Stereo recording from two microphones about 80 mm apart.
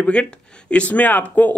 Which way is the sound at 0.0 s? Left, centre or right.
Centre.